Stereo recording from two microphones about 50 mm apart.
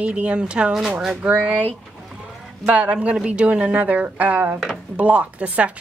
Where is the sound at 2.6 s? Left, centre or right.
Right.